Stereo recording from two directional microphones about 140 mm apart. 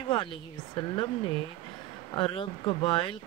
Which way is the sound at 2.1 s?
40° left (ahead or behind).